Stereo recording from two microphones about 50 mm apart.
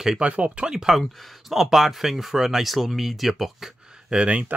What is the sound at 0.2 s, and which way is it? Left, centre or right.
Speech, right.